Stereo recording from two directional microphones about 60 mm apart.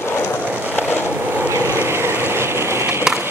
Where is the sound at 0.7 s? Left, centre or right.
Left.